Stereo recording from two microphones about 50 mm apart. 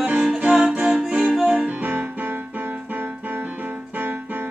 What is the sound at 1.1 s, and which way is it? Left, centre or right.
Music, centre.